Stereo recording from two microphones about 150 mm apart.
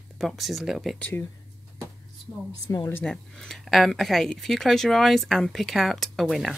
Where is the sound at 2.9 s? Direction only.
5° left (ahead or behind).